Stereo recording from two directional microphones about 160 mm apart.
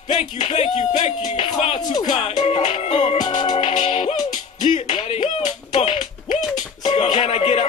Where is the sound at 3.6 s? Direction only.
45° left (ahead or behind).